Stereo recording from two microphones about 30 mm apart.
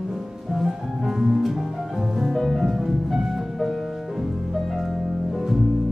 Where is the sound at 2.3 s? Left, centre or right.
Centre.